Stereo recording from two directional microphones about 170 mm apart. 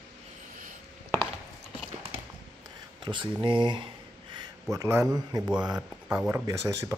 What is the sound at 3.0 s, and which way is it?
Speech, 30° right (ahead or behind).